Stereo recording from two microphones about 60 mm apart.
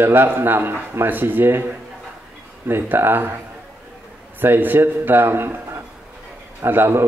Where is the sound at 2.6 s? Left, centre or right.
Right.